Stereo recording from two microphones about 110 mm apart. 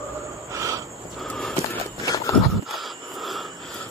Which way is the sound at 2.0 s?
30° left (ahead or behind).